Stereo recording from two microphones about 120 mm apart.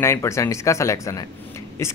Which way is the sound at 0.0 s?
25° left (ahead or behind).